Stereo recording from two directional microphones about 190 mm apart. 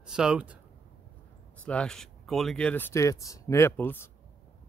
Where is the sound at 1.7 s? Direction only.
5° left (ahead or behind).